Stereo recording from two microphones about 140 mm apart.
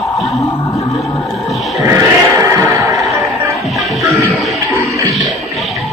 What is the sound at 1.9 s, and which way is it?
Music, 20° right (ahead or behind).